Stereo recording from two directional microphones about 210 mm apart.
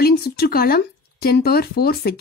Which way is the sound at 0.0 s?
45° left (ahead or behind).